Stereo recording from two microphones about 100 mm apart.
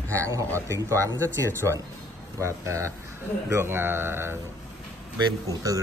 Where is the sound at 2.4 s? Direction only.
30° right (ahead or behind).